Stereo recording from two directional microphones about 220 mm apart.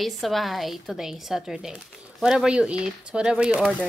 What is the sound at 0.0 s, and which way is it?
A woman's voice, centre (ahead or behind).